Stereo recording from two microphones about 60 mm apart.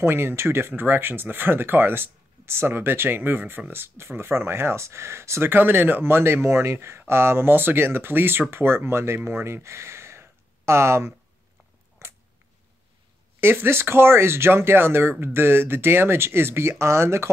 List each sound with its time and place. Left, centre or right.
0.0 s speech: right
12.0 s a sound: right
13.4 s speech: right